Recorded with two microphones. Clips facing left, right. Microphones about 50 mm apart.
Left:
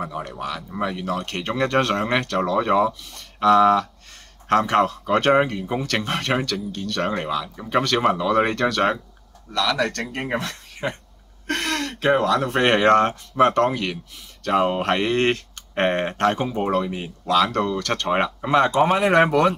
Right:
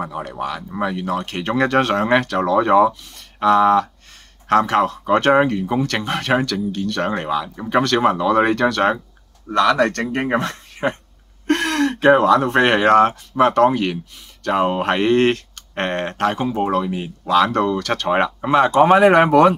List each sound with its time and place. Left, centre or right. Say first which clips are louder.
0.0 s speech: right 3 dB; centre
3.2 s a sound: right 1 dB; centre
4.5 s speech: right 2 dB; centre
7.8 s speech: right 4 dB; centre
9.5 s speech: right 7 dB; right
10.1 s speech: right 6 dB; right
11.5 s speech: right 7 dB; centre
15.7 s speech: left 1 dB; centre
16.2 s speech: right 2 dB; centre